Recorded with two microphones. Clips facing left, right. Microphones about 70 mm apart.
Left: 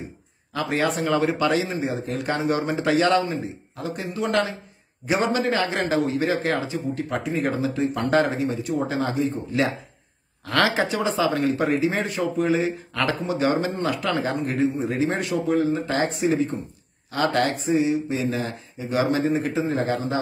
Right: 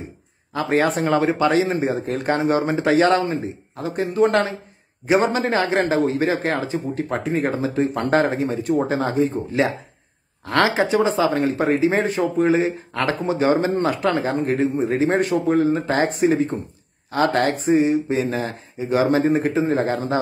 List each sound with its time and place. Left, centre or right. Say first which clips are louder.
0.5 s a man's voice: right 4 dB; right
1.7 s a man's voice: right 5 dB; right
10.4 s a man's voice: right 3 dB; right